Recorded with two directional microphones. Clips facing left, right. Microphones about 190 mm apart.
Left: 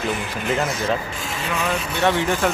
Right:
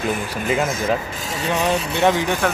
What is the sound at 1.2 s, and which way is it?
Speech, 40° right (ahead or behind).